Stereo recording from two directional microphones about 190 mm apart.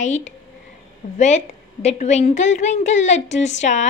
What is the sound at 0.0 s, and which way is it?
A woman's voice, 40° left (ahead or behind).